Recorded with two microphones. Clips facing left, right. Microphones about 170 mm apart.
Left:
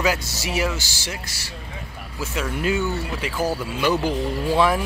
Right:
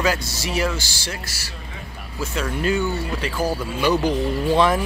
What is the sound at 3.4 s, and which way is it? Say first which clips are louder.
Speech: right 1 dB; 15° right (ahead or behind).